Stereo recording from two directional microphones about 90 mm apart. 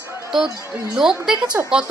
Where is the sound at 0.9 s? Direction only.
5° right (ahead or behind).